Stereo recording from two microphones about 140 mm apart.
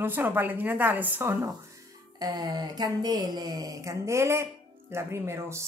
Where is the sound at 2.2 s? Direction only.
30° right (ahead or behind).